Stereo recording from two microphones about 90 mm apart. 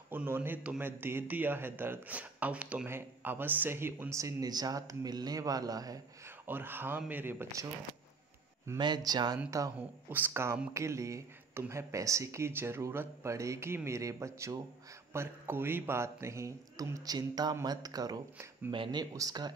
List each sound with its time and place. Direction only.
0.1 s a man's voice: 25° right (ahead or behind)
2.9 s speech: 25° right (ahead or behind); by 5.9 s 45° right (ahead or behind)
6.2 s a man's voice: 25° right (ahead or behind)
8.7 s speech: 55° right (ahead or behind)
9.8 s a man's voice: 20° right (ahead or behind); by 18.2 s 45° right (ahead or behind)
18.7 s speech: 60° right (ahead or behind)
19.1 s speech: 45° right (ahead or behind)